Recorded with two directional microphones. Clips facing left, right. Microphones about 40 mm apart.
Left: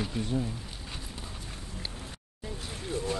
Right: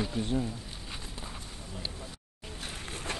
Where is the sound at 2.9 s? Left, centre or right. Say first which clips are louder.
Left 7 dB; right.